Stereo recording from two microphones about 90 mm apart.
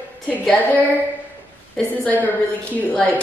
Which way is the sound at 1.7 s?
15° left (ahead or behind).